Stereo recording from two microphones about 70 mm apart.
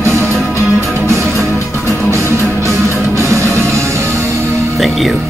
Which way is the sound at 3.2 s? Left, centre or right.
Right.